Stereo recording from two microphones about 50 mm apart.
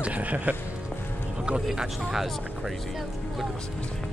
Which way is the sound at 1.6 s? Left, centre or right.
Centre.